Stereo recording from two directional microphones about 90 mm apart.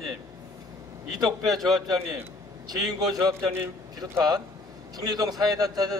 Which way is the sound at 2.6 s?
45° right (ahead or behind).